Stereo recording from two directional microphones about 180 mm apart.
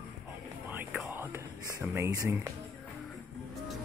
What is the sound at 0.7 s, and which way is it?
Music, 5° right (ahead or behind).